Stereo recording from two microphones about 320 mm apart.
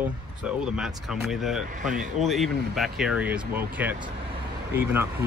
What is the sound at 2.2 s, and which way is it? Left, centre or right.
Speech, centre.